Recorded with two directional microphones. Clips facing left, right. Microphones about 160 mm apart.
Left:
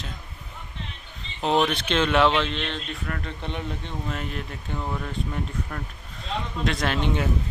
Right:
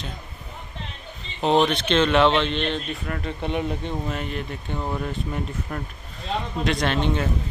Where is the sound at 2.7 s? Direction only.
5° right (ahead or behind).